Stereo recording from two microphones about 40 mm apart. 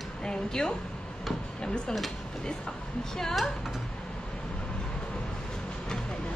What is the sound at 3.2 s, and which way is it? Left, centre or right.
Speech, centre.